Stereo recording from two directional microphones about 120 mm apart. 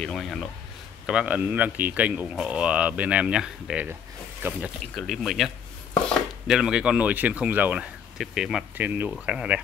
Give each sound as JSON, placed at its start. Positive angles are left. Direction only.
{"t": 0.0, "sound": "speech", "side_deg": 5}
{"t": 1.0, "sound": "speech", "side_deg": -10}
{"t": 8.2, "sound": "speech", "side_deg": -5}
{"t": 8.7, "sound": "speech", "side_deg": -15}